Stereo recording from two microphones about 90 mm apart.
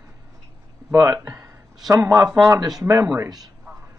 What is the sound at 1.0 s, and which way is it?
Speech, 35° right (ahead or behind).